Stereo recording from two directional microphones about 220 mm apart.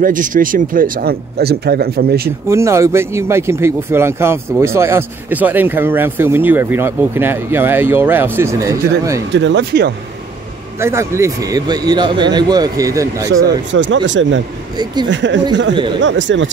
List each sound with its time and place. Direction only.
0.0 s speech: 35° right (ahead or behind)
2.5 s speech: 15° right (ahead or behind)
9.3 s speech: 55° right (ahead or behind)
10.8 s speech: 10° right (ahead or behind)
13.7 s speech: 55° right (ahead or behind)